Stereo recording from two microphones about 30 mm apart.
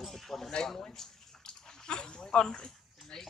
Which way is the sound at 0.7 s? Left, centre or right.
Left.